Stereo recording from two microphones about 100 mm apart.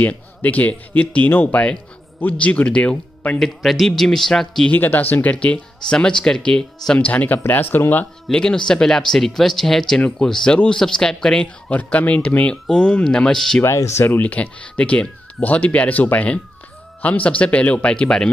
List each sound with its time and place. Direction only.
0.0 s speech: 15° left (ahead or behind)
4.7 s speech: 20° left (ahead or behind)
13.6 s speech: 25° left (ahead or behind); by 18.3 s 10° left (ahead or behind)